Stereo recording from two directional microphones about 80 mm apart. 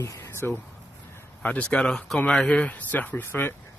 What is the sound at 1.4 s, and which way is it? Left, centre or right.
Speech, centre.